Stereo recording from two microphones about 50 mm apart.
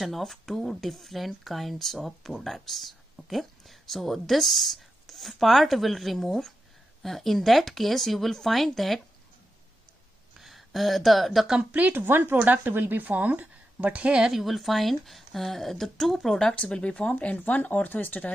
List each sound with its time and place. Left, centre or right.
0.0 s speech: centre
10.4 s speech: centre
11.7 s a woman's voice: right
12.0 s a woman's voice: right
14.3 s speech: centre
16.5 s speech: left